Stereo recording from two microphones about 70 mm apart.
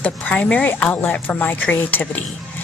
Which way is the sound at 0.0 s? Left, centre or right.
Left.